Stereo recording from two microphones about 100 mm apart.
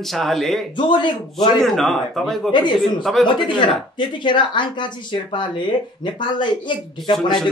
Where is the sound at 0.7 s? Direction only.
50° left (ahead or behind).